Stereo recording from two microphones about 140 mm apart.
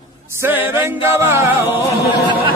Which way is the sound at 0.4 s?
15° right (ahead or behind).